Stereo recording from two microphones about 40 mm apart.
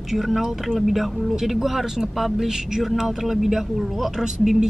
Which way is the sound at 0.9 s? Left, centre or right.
Centre.